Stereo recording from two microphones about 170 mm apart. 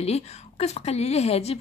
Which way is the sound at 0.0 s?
40° left (ahead or behind).